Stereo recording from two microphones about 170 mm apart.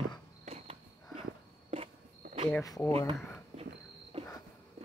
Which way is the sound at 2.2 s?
40° right (ahead or behind).